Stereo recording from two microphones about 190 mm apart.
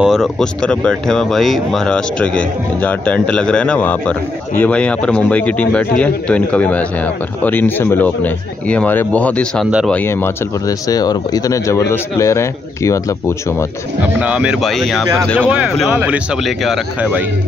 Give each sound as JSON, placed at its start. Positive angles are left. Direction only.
{"t": 0.0, "sound": "a man's voice", "side_deg": 0}
{"t": 14.0, "sound": "speech", "side_deg": -5}